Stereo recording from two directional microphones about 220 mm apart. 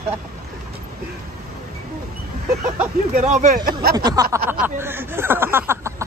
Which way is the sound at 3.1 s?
35° right (ahead or behind).